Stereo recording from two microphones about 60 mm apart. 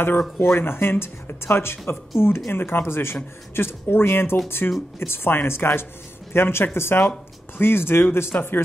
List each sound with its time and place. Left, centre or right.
0.4 s speech: left